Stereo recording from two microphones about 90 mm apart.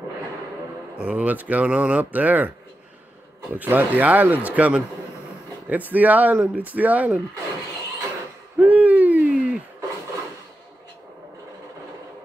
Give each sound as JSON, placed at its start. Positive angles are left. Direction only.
{"t": 0.9, "sound": "speech", "side_deg": -15}
{"t": 3.5, "sound": "speech", "side_deg": -20}
{"t": 8.5, "sound": "hoot", "side_deg": -15}